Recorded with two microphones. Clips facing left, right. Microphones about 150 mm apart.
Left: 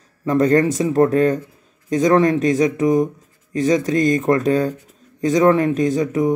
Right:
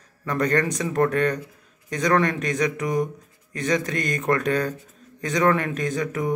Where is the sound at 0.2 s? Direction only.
25° left (ahead or behind).